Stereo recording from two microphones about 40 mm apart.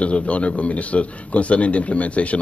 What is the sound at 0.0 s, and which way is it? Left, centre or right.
A man's voice, left.